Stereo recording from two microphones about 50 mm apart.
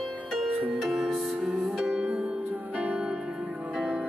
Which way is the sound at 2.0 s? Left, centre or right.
Centre.